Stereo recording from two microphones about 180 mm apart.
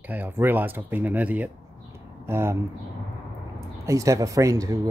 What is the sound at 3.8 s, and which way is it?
Speech, 15° right (ahead or behind).